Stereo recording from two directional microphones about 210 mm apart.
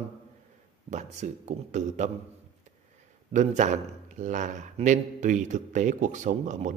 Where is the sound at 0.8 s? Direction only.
35° right (ahead or behind).